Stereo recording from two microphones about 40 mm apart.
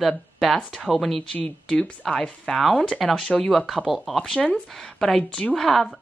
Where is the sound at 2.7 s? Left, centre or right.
Left.